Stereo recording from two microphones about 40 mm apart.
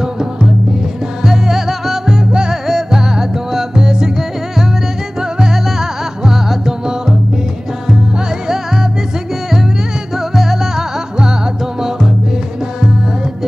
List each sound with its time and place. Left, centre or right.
1.2 s music: centre
2.0 s music: centre
10.1 s music: centre